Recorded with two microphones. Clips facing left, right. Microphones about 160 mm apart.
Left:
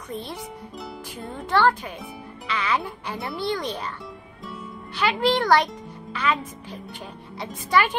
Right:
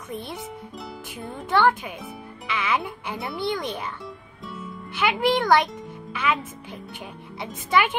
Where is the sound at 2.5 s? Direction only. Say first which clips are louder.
Even; 15° right (ahead or behind).